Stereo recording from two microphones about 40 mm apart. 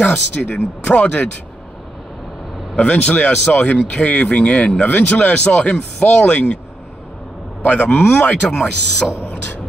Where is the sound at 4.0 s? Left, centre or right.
Centre.